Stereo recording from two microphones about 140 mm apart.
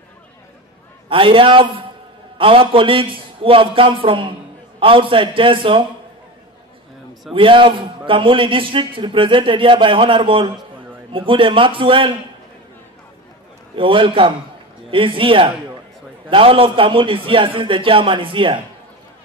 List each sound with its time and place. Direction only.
1.0 s a man's voice: 40° right (ahead or behind)
7.3 s a man's voice: 35° right (ahead or behind)
13.7 s a man's voice: 35° right (ahead or behind)